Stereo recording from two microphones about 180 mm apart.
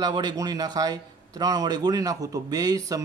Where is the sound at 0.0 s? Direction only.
25° right (ahead or behind).